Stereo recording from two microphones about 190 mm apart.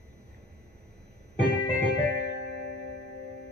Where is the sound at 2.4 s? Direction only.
90° left.